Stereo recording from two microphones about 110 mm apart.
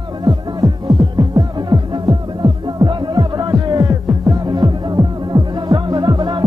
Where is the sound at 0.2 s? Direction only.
40° right (ahead or behind).